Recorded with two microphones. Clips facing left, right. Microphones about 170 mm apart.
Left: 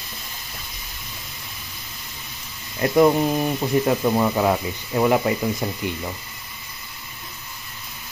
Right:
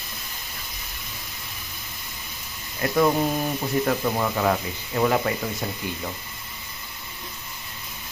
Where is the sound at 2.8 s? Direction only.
25° left (ahead or behind).